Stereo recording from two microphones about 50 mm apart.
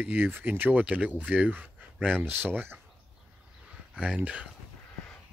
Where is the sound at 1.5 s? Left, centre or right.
Right.